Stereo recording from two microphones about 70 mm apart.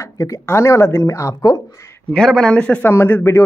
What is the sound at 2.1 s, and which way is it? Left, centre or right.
Speech, centre.